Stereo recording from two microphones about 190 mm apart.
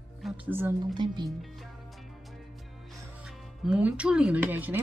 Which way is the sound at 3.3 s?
5° right (ahead or behind).